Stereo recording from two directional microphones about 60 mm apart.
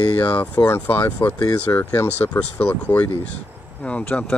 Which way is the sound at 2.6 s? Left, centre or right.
Left.